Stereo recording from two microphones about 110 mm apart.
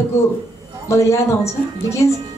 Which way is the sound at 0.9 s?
25° left (ahead or behind).